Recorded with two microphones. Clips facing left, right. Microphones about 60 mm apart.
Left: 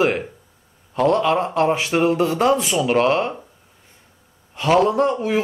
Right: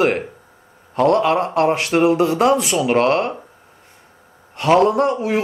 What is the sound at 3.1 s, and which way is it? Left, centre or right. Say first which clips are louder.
Speech: right 2 dB; centre.